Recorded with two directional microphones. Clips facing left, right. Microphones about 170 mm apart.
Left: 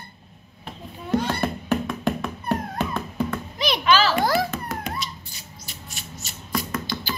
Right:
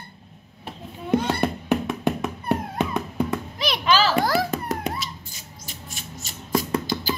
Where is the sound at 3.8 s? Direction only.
40° right (ahead or behind).